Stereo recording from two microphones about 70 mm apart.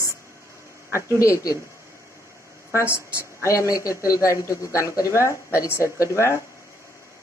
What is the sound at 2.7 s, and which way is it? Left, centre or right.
A woman's voice, left.